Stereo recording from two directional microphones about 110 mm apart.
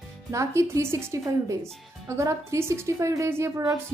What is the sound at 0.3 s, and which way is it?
Speech, 25° right (ahead or behind).